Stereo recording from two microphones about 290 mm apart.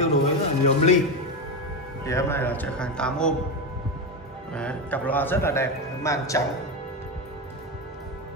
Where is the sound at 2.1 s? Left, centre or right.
Centre.